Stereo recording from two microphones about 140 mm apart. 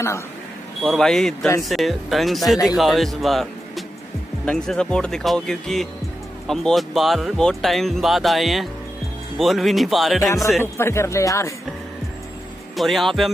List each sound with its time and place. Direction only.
0.8 s speech: 5° left (ahead or behind)
10.6 s speech: 20° left (ahead or behind)
12.7 s speech: centre (ahead or behind)